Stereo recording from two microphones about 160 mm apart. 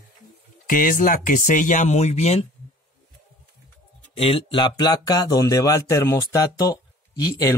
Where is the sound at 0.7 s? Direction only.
60° left (ahead or behind).